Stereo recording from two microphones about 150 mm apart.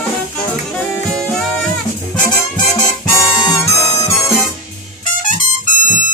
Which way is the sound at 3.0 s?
20° left (ahead or behind).